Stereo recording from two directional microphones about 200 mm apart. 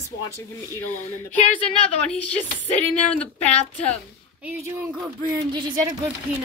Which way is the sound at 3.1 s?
5° left (ahead or behind).